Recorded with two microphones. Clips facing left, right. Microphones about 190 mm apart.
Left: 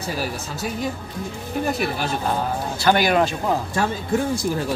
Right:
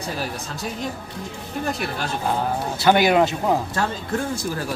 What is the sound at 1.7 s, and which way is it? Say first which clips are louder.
Speech: left 2 dB; 5° left (ahead or behind).